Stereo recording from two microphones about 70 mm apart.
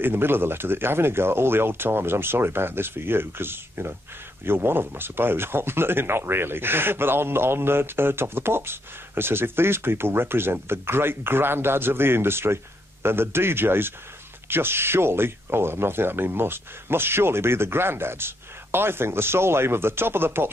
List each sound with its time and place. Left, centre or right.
0.0 s speech: right